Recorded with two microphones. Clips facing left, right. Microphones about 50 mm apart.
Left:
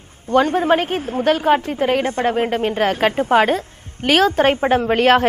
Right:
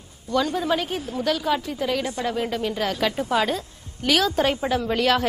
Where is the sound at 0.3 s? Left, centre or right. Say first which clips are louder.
Left 8 dB; left.